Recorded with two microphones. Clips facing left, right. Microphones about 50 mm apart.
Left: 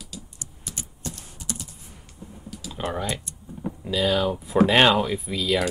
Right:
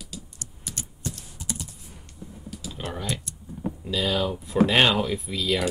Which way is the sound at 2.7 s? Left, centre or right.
Centre.